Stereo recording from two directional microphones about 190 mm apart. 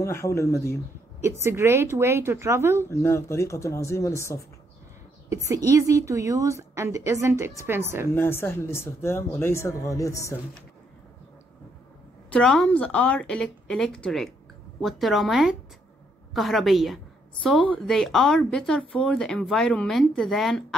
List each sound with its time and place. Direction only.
0.0 s speech: 15° left (ahead or behind)
1.4 s a woman's voice: 15° right (ahead or behind)
2.9 s speech: 15° left (ahead or behind)
5.3 s a woman's voice: 15° right (ahead or behind)
8.1 s speech: 10° left (ahead or behind)
12.3 s a woman's voice: 5° left (ahead or behind)